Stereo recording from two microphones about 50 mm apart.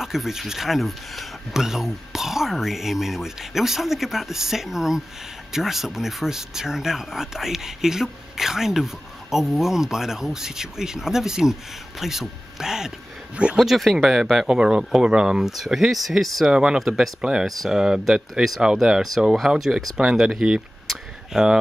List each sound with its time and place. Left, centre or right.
0.0 s speech: centre
16.5 s speech: centre
16.8 s speech: centre
17.2 s speech: centre
20.8 s a sound: centre